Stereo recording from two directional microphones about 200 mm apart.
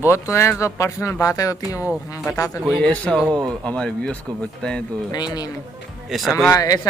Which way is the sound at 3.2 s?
20° right (ahead or behind).